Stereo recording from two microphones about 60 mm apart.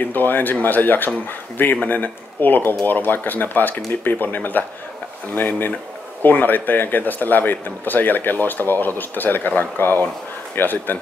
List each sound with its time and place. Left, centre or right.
0.0 s speech: left